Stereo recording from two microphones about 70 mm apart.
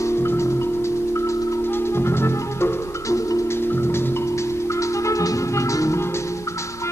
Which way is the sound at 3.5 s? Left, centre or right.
Left.